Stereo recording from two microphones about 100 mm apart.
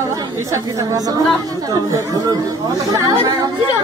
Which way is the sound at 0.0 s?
30° right (ahead or behind).